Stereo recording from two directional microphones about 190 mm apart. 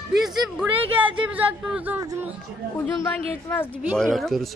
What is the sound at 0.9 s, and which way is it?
Speech, 10° right (ahead or behind).